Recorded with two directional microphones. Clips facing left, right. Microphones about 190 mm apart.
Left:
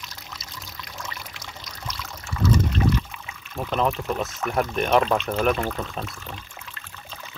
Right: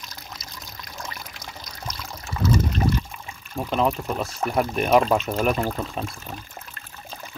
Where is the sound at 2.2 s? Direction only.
35° right (ahead or behind).